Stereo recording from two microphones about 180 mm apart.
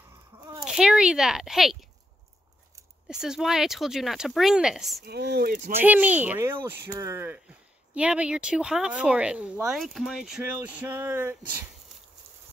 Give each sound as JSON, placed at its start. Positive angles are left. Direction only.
{"t": 0.7, "sound": "speech", "side_deg": -5}
{"t": 3.1, "sound": "speech", "side_deg": -5}
{"t": 5.0, "sound": "speech", "side_deg": -65}
{"t": 5.8, "sound": "speech", "side_deg": -10}